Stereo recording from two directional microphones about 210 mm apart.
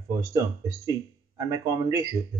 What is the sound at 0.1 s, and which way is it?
Speech, 15° right (ahead or behind).